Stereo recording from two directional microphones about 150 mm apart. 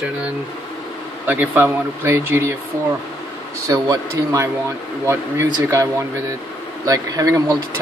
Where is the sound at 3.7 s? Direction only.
25° right (ahead or behind).